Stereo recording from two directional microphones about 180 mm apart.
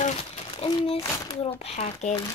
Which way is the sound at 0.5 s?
30° left (ahead or behind).